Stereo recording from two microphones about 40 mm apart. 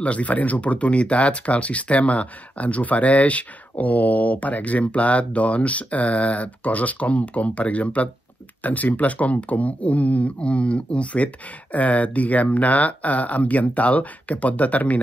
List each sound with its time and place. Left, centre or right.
0.0 s speech: left